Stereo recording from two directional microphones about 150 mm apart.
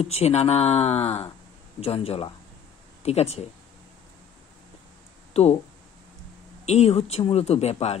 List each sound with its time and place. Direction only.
0.0 s speech: 45° left (ahead or behind)
5.3 s speech: 45° left (ahead or behind)
6.6 s speech: 45° left (ahead or behind)